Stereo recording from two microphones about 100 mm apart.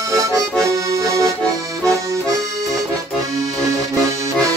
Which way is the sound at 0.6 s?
30° right (ahead or behind).